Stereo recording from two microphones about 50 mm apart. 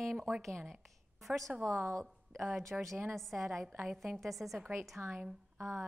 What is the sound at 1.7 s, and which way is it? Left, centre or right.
Speech, right.